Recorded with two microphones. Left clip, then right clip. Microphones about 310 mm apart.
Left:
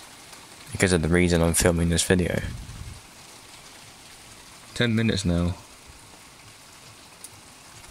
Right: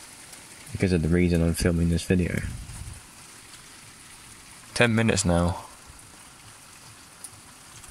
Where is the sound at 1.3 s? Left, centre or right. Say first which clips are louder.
Left 4 dB; left.